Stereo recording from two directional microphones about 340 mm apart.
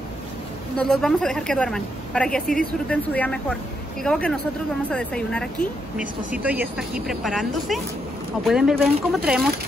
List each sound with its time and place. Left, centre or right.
0.7 s speech: centre